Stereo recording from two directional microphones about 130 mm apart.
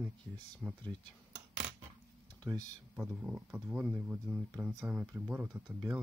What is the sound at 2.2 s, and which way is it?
Computer keyboard, 30° right (ahead or behind).